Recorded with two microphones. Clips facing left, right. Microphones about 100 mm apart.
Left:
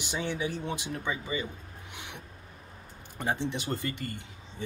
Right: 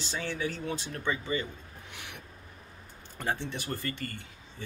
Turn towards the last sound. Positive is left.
turn(degrees=20)  # may be behind; listen again after turning